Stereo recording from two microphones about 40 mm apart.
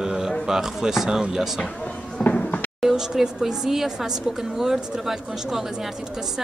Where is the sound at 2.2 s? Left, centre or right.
Left.